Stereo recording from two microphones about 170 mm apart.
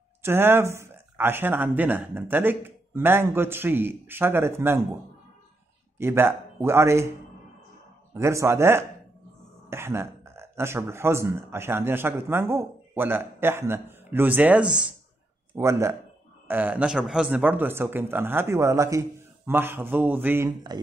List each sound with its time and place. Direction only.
0.2 s a man's voice: 15° right (ahead or behind)
5.9 s a man's voice: 15° right (ahead or behind)
15.5 s a man's voice: 15° right (ahead or behind)